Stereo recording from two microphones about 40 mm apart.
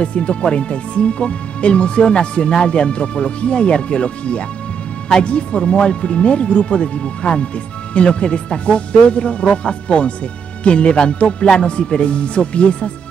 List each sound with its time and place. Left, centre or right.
0.0 s speech: left